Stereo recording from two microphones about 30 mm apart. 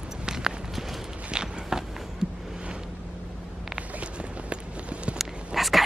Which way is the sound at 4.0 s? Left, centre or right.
Right.